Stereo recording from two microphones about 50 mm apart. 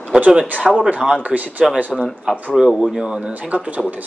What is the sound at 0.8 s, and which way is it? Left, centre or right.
Speech, right.